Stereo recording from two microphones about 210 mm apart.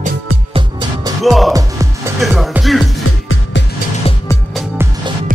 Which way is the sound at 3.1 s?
75° left (ahead or behind).